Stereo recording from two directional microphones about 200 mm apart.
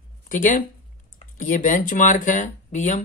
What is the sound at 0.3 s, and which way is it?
Speech, 40° left (ahead or behind).